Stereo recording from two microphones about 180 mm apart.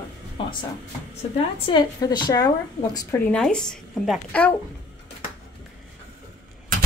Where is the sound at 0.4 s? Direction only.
30° left (ahead or behind).